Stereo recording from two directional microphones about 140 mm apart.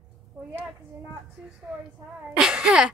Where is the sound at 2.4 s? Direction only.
5° right (ahead or behind).